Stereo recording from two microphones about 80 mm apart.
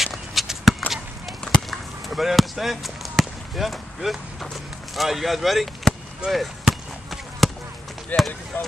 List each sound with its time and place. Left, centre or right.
0.0 s a sound: centre
1.4 s basketball bounce: centre
4.9 s chop: centre
8.1 s speech: left